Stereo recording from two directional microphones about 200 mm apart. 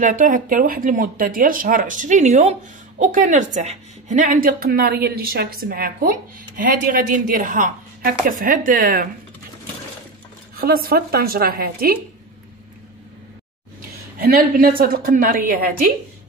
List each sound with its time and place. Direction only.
0.0 s a woman's voice: 40° right (ahead or behind)
10.6 s a woman's voice: 50° right (ahead or behind)
13.7 s a sound: 45° right (ahead or behind)
14.8 s a woman's voice: 45° right (ahead or behind)